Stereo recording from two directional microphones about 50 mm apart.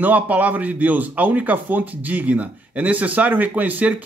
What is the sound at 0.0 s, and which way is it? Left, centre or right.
Speech, right.